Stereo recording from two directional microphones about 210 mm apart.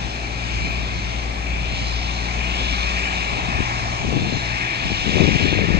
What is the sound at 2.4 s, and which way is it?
Vehicle, 50° right (ahead or behind).